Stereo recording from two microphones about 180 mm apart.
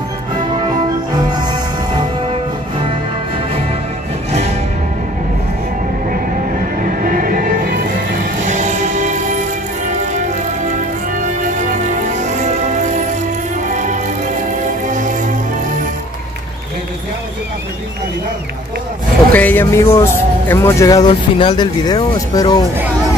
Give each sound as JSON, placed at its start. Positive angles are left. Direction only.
{"t": 1.1, "sound": "music", "side_deg": -25}
{"t": 6.8, "sound": "music", "side_deg": -50}
{"t": 8.5, "sound": "music", "side_deg": -40}
{"t": 10.7, "sound": "music", "side_deg": -45}
{"t": 19.3, "sound": "speech", "side_deg": 10}